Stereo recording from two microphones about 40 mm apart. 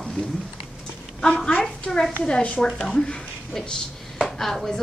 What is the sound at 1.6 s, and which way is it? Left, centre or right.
A woman's voice, centre.